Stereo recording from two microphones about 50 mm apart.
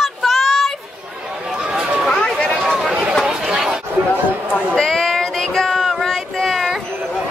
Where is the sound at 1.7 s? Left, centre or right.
Centre.